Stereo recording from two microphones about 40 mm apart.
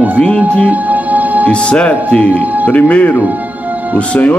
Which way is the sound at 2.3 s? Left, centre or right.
Right.